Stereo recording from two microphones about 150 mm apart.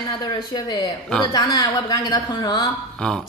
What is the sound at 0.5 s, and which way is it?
A woman's voice, 25° left (ahead or behind).